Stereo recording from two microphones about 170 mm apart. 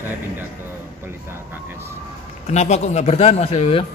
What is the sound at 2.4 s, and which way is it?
A man's voice, 40° left (ahead or behind).